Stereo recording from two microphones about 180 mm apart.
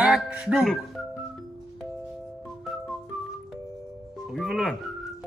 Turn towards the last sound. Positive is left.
turn(degrees=0)  # may be behind; listen again after turning